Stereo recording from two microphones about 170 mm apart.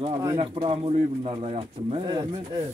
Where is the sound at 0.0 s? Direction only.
20° right (ahead or behind).